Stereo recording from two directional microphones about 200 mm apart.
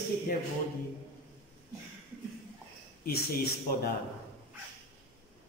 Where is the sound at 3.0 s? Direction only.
50° left (ahead or behind).